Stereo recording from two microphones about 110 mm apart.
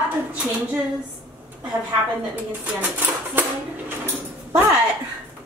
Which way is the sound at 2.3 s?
15° right (ahead or behind).